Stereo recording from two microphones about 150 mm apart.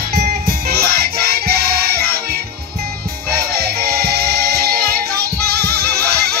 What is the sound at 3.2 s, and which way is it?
Music, 90° right.